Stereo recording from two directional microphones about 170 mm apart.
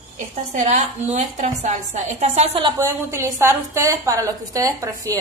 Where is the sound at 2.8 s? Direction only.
15° right (ahead or behind).